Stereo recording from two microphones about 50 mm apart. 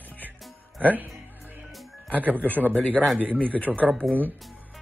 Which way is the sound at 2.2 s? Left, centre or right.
Right.